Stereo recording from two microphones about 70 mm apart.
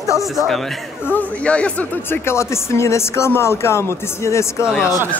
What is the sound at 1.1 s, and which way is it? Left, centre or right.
Speech, left.